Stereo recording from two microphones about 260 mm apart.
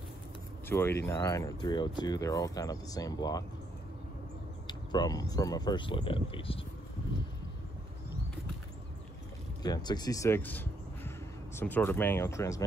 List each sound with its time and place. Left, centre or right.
0.7 s speech: centre
4.6 s speech: centre
9.6 s speech: centre